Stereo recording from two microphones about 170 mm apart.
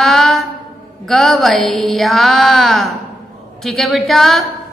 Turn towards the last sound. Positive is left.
turn(degrees=0)  # may be behind; listen again after turning